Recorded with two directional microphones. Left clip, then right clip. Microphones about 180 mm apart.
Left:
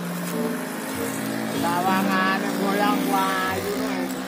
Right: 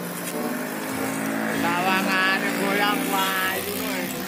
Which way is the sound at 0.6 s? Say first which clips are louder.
Right 1 dB; 50° right (ahead or behind).